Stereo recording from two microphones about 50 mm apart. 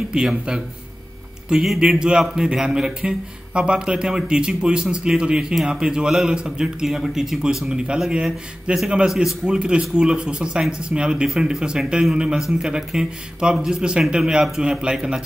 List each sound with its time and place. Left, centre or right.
0.1 s a man's voice: centre
1.8 s a man's voice: centre
7.6 s a man's voice: centre
9.5 s a man's voice: centre